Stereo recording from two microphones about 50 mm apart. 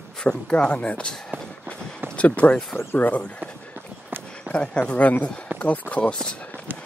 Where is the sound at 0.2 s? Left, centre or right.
Centre.